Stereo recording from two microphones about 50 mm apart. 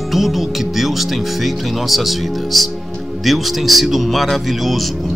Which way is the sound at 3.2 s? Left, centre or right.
Centre.